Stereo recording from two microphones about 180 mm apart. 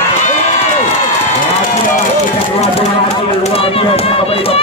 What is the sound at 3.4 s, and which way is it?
Speech, 30° left (ahead or behind).